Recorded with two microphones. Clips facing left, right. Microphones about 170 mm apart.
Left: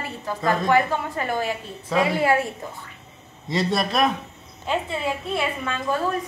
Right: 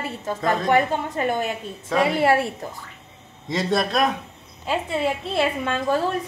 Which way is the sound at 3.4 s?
Centre (ahead or behind).